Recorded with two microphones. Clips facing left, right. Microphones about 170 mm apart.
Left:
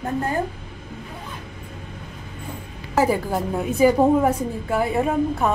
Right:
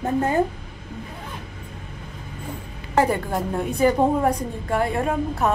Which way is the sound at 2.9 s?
5° left (ahead or behind).